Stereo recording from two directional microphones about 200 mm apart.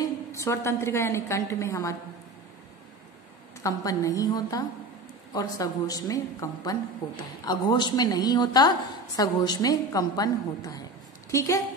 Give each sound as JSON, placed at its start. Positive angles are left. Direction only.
{"t": 0.0, "sound": "a woman's voice", "side_deg": 15}
{"t": 3.6, "sound": "a woman's voice", "side_deg": 15}